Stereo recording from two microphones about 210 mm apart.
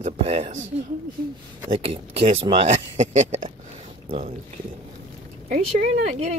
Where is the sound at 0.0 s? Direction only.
30° right (ahead or behind).